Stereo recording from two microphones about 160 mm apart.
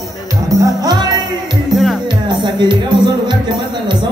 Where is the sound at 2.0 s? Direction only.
30° right (ahead or behind).